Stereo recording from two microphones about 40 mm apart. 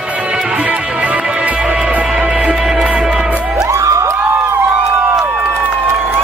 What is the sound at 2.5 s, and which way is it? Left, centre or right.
Music, centre.